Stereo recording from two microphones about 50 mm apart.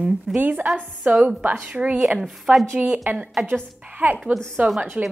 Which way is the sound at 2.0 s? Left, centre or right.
Centre.